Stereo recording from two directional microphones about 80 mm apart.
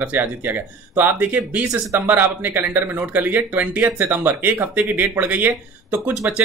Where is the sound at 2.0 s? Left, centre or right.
Right.